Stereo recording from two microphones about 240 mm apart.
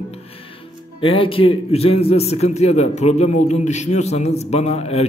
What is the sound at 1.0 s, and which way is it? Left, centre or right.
A man's voice, left.